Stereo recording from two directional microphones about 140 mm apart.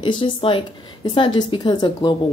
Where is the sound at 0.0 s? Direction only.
40° left (ahead or behind).